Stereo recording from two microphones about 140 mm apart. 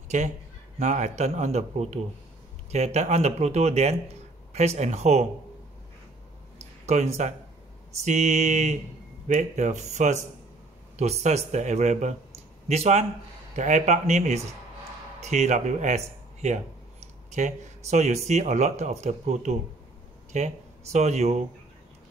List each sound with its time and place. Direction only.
0.1 s speech: 60° right (ahead or behind)
6.9 s speech: 55° right (ahead or behind)